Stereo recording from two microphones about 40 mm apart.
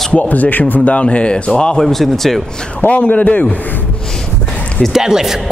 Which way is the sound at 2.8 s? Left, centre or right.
Left.